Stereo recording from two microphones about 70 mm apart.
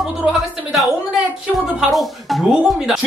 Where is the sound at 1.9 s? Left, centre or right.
Centre.